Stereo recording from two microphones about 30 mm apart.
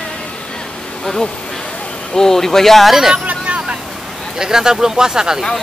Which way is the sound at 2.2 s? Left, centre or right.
Centre.